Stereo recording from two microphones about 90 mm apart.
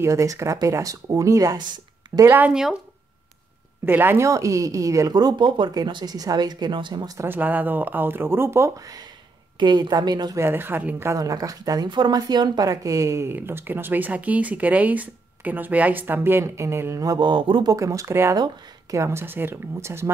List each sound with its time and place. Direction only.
0.0 s speech: 35° right (ahead or behind)
1.6 s a sound: 55° right (ahead or behind)
2.2 s speech: 20° right (ahead or behind)
2.5 s speech: 5° right (ahead or behind)
3.8 s speech: 25° right (ahead or behind)
4.3 s speech: 35° right (ahead or behind)
7.2 s speech: 20° right (ahead or behind); by 9.0 s 40° right (ahead or behind)
9.6 s speech: 55° right (ahead or behind)
10.3 s speech: 25° right (ahead or behind)
11.1 s speech: 40° right (ahead or behind)
11.9 s speech: 55° right (ahead or behind); by 17.0 s 30° right (ahead or behind)
17.2 s speech: 65° right (ahead or behind)
17.6 s speech: 40° right (ahead or behind)
18.3 s speech: 40° right (ahead or behind)